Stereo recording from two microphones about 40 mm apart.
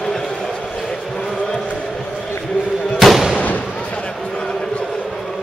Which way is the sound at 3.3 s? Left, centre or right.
Left.